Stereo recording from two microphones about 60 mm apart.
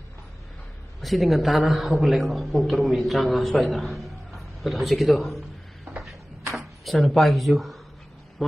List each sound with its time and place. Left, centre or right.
1.0 s a man's voice: centre
6.5 s a man's voice: centre